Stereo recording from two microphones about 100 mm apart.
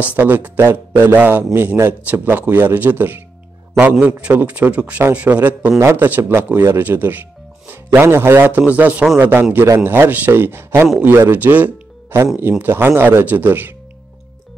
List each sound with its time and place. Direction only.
0.0 s a man's voice: 15° right (ahead or behind)
11.3 s music: 15° right (ahead or behind)
12.4 s a man's voice: 20° right (ahead or behind)